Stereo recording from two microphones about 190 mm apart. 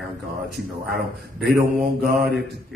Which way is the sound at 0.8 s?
60° right (ahead or behind).